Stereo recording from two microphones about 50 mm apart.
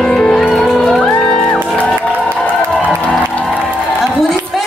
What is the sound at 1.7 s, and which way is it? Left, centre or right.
Music, left.